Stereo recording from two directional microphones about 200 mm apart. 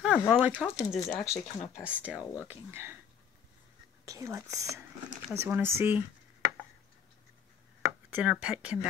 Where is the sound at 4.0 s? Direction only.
15° right (ahead or behind).